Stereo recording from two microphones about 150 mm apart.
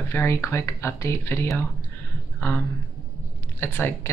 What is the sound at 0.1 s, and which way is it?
Speech, 20° left (ahead or behind).